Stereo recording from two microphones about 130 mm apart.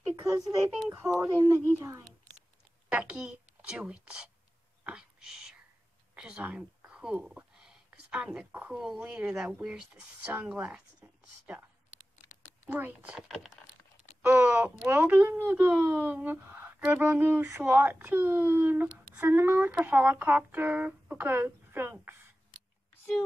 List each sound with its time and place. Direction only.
0.1 s a child's voice: 20° right (ahead or behind)
4.8 s a sound: 5° right (ahead or behind)
6.1 s speech: 10° right (ahead or behind)
12.6 s speech: 15° right (ahead or behind)
14.2 s speech: 15° right (ahead or behind)